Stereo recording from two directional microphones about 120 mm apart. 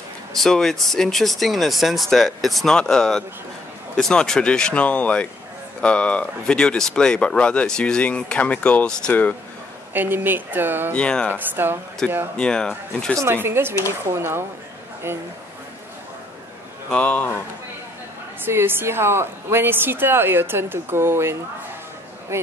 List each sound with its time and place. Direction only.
0.3 s speech: 5° left (ahead or behind)
9.9 s speech: 15° right (ahead or behind)
10.9 s speech: 10° left (ahead or behind)
11.3 s a woman's voice: 20° right (ahead or behind)
12.0 s speech: 5° left (ahead or behind)
13.2 s a woman's voice: 20° right (ahead or behind)
16.9 s speech: 10° left (ahead or behind)
18.4 s a woman's voice: 20° right (ahead or behind)